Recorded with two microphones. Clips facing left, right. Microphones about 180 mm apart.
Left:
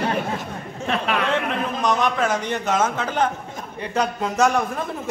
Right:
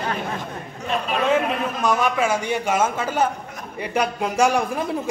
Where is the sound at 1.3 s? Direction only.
10° right (ahead or behind).